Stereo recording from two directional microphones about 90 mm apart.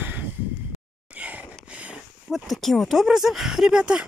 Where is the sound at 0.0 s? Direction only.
20° right (ahead or behind).